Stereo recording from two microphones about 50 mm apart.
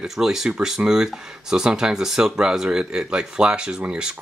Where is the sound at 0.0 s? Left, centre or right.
Centre.